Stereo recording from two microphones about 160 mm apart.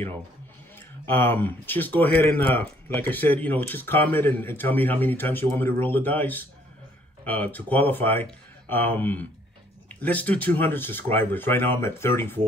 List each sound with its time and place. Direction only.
0.7 s speech: 15° left (ahead or behind)